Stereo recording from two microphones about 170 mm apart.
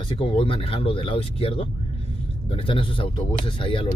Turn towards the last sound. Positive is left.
turn(degrees=30)  # may be behind; listen again after turning